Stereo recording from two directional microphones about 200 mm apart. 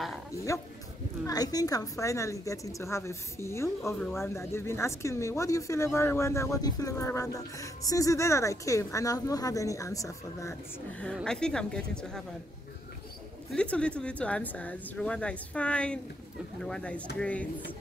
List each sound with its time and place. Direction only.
0.5 s speech: 15° left (ahead or behind)
13.5 s speech: 5° left (ahead or behind)